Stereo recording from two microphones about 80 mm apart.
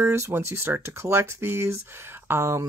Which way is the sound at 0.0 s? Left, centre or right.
Right.